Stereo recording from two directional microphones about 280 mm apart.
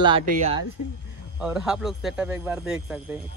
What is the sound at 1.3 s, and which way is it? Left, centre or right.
Speech, centre.